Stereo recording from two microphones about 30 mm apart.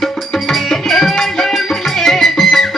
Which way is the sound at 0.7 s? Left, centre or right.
Centre.